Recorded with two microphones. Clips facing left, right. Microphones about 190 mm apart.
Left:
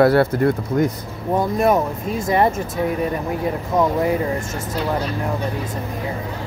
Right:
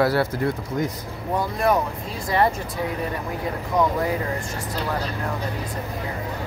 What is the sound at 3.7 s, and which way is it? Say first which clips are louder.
Speech: left 2 dB; 20° left (ahead or behind).